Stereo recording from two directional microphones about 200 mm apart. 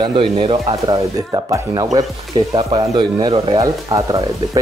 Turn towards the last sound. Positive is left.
turn(degrees=-20)  # may be behind; listen again after turning